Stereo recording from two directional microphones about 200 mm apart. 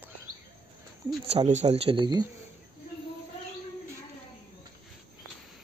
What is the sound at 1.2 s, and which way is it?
Speech, 30° right (ahead or behind).